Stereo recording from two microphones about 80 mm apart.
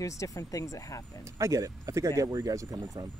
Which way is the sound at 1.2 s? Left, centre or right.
Right.